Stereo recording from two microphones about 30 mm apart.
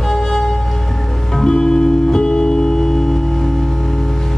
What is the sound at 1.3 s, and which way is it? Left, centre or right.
Music, left.